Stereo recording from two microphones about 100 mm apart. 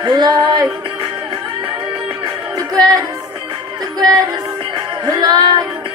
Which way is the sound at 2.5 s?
40° right (ahead or behind).